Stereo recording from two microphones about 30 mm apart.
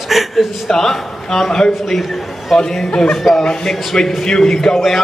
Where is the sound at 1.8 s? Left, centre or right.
Centre.